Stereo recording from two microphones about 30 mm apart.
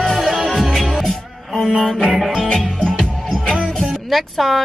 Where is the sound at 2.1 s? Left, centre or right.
Centre.